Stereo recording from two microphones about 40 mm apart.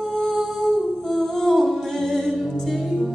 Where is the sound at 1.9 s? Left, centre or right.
Centre.